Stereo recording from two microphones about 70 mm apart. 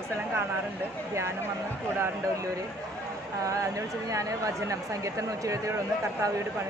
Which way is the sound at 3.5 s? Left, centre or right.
Right.